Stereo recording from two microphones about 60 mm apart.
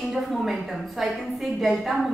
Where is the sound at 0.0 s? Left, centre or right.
Centre.